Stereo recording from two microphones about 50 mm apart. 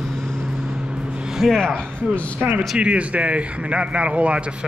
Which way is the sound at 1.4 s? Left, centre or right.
Centre.